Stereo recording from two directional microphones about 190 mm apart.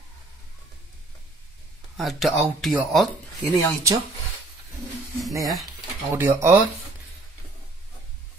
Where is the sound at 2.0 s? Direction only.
Centre (ahead or behind).